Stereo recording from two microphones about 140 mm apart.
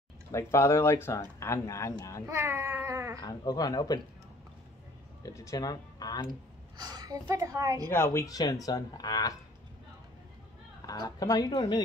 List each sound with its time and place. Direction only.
0.3 s speech: 20° left (ahead or behind)
2.2 s a woman's voice: 15° right (ahead or behind)
3.2 s speech: 25° left (ahead or behind)
5.2 s speech: 20° left (ahead or behind)
6.8 s a woman's voice: 30° right (ahead or behind)
7.9 s speech: 20° left (ahead or behind)
10.9 s speech: 25° left (ahead or behind)